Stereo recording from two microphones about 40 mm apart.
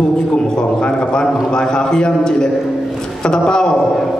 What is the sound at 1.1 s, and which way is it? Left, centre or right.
A man's voice, left.